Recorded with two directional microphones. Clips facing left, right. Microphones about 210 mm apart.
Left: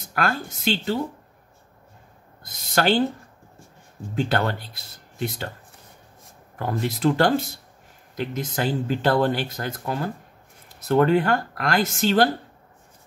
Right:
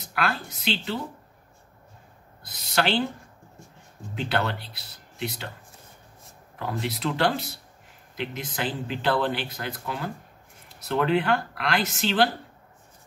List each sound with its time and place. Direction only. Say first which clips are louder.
0.0 s speech: left 3 dB; 45° left (ahead or behind)
2.4 s speech: left 4 dB; 45° left (ahead or behind)
4.1 s speech: left 4 dB; 45° left (ahead or behind)
6.6 s speech: left 6 dB; 45° left (ahead or behind)